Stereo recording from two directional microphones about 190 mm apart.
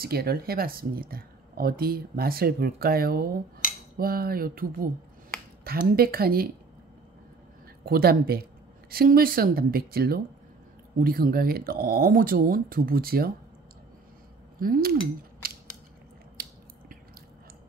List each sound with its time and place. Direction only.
0.0 s speech: 55° right (ahead or behind)
7.8 s speech: 55° right (ahead or behind)
14.6 s speech: 50° right (ahead or behind)
16.4 s biting: 50° right (ahead or behind)